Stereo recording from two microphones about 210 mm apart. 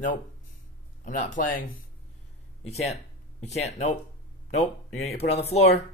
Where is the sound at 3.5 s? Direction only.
30° left (ahead or behind).